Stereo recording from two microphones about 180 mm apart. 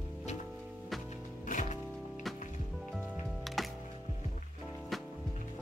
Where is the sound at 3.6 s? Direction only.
Centre (ahead or behind).